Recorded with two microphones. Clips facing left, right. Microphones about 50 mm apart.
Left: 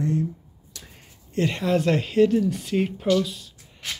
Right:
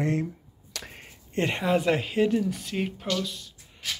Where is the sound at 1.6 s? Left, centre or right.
Centre.